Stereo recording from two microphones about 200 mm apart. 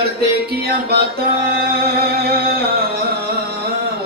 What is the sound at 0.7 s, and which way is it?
Music, 50° right (ahead or behind).